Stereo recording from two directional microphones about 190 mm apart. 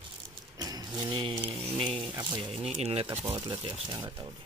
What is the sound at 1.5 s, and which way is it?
Speech, centre (ahead or behind).